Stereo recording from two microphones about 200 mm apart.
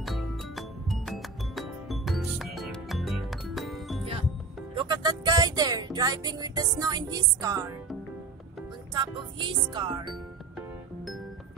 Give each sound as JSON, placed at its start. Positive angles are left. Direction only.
{"t": 0.0, "sound": "music", "side_deg": 0}
{"t": 4.0, "sound": "music", "side_deg": -30}
{"t": 8.9, "sound": "music", "side_deg": -25}